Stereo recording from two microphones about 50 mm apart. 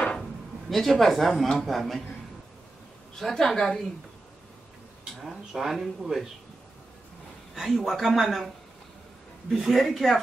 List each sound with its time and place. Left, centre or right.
0.0 s a sound: centre
0.7 s speech: centre
3.2 s a woman's voice: centre
5.1 s speech: centre
7.5 s speech: centre
9.5 s speech: centre